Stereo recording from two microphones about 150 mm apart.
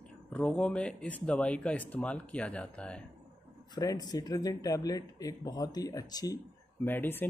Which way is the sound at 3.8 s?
25° left (ahead or behind).